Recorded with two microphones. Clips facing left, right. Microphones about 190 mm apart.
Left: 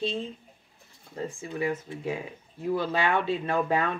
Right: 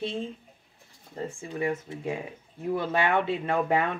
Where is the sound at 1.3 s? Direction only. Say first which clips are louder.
Even; 25° right (ahead or behind).